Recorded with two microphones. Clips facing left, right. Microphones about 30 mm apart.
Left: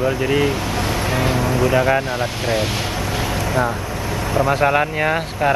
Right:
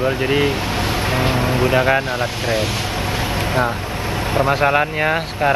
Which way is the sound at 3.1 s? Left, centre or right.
Right.